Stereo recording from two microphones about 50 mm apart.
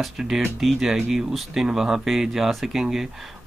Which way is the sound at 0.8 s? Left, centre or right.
Centre.